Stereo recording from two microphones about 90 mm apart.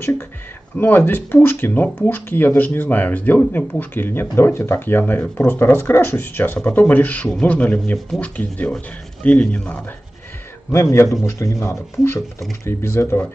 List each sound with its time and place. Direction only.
0.7 s speech: 20° left (ahead or behind)
10.7 s speech: 30° left (ahead or behind)